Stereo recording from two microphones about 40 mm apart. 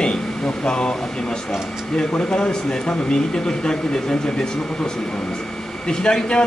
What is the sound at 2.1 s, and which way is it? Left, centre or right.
A man's voice, left.